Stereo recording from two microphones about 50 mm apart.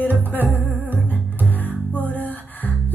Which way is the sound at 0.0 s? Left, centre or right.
Left.